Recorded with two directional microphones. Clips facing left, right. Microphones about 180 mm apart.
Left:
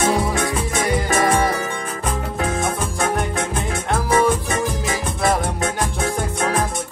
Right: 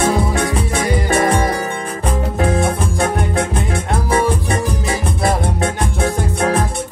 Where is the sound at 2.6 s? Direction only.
30° right (ahead or behind).